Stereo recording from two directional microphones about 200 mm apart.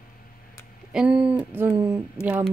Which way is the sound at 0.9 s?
5° right (ahead or behind).